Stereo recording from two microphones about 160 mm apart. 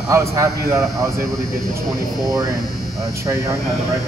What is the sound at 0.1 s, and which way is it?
A man's voice, 20° right (ahead or behind).